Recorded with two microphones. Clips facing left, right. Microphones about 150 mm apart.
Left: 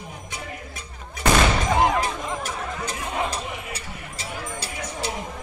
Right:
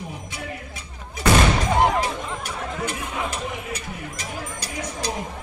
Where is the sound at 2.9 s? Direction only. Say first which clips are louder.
Left 1 dB; 35° left (ahead or behind).